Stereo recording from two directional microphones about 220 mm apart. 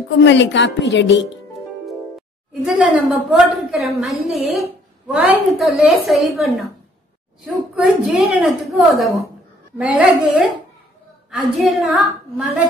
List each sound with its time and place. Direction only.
0.2 s a woman's voice: 55° left (ahead or behind)
2.6 s a woman's voice: 5° right (ahead or behind)
7.7 s a woman's voice: centre (ahead or behind)